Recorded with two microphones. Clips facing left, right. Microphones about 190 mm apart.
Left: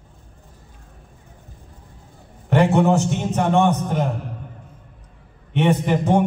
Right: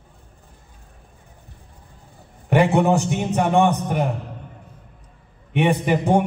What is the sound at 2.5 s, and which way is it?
A man's voice, 15° right (ahead or behind).